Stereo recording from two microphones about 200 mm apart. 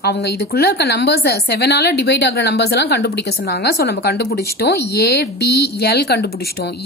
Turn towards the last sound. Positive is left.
turn(degrees=55)  # may be behind; listen again after turning